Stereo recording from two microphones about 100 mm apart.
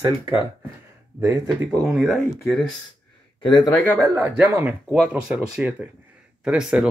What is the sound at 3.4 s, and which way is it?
Speech, 45° left (ahead or behind).